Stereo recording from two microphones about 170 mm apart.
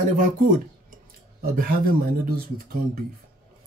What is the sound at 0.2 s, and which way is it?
Speech, 50° right (ahead or behind).